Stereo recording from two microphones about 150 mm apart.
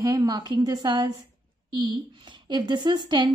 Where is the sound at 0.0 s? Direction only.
25° right (ahead or behind).